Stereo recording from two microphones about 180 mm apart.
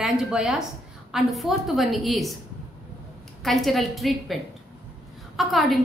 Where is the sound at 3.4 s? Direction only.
Centre (ahead or behind).